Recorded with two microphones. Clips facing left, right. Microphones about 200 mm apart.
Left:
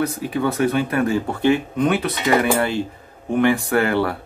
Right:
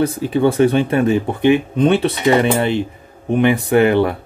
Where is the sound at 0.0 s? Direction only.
30° right (ahead or behind).